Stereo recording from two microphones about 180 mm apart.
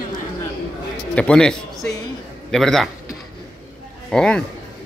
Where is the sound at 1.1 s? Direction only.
5° left (ahead or behind).